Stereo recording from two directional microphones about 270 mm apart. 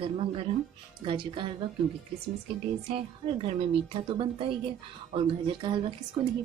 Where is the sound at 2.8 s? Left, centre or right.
Centre.